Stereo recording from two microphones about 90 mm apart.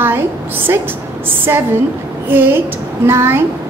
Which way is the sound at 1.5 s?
30° right (ahead or behind).